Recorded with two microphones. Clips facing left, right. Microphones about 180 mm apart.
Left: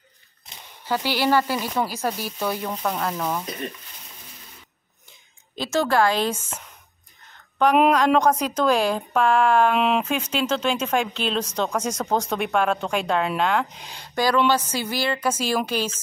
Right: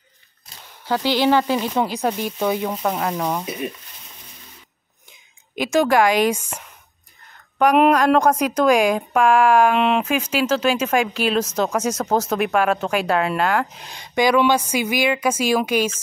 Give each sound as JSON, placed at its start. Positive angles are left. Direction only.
{"t": 1.2, "sound": "speech", "side_deg": -20}
{"t": 1.9, "sound": "speech", "side_deg": 0}
{"t": 5.6, "sound": "speech", "side_deg": -15}
{"t": 7.7, "sound": "speech", "side_deg": -5}